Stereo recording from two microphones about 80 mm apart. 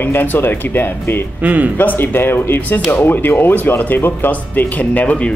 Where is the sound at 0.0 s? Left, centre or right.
Left.